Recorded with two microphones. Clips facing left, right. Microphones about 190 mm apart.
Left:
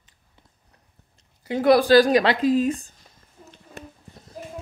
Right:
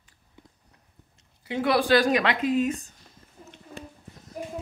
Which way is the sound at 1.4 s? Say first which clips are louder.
Left 7 dB; 40° left (ahead or behind).